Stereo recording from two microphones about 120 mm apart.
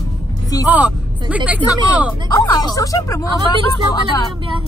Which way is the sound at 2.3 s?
35° left (ahead or behind).